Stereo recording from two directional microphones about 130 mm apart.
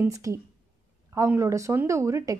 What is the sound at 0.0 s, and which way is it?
A woman's voice, 25° right (ahead or behind).